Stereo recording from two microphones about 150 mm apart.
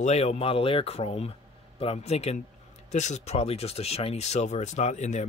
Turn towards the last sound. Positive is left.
turn(degrees=50)  # may be behind; listen again after turning